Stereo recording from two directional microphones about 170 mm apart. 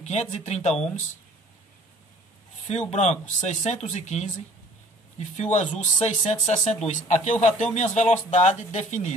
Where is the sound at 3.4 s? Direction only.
40° left (ahead or behind).